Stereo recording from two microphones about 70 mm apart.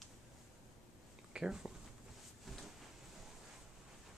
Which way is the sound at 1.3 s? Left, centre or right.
Centre.